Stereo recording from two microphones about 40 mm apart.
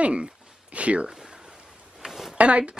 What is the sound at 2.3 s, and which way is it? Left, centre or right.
Speech, right.